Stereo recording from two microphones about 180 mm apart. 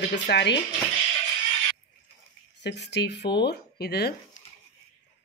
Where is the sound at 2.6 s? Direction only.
70° left (ahead or behind).